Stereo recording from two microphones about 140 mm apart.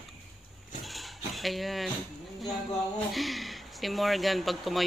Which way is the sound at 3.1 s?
Centre (ahead or behind).